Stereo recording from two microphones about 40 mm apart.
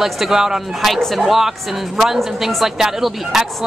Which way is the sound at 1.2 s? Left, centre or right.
Centre.